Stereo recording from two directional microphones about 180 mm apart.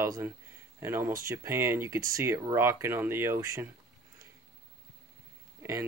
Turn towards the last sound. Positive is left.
turn(degrees=-15)  # may be behind; listen again after turning